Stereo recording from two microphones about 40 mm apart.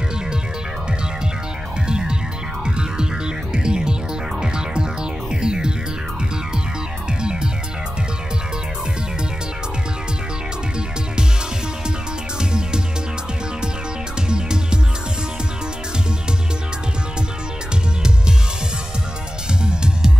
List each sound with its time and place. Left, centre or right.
1.9 s music: right
3.5 s music: right
12.4 s music: centre
14.3 s music: right
19.6 s music: right